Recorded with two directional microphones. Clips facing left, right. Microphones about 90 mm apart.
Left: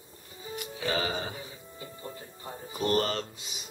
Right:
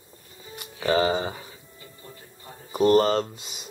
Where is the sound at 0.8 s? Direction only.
30° right (ahead or behind).